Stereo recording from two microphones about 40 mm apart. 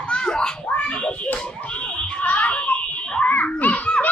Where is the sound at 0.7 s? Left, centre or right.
Left.